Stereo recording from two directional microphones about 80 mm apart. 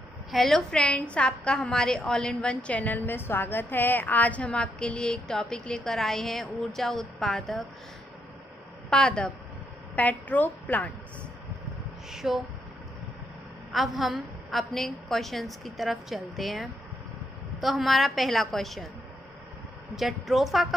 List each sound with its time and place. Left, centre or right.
0.3 s a woman's voice: centre
8.9 s a woman's voice: centre
12.1 s a woman's voice: centre
13.7 s a woman's voice: centre
20.0 s a woman's voice: centre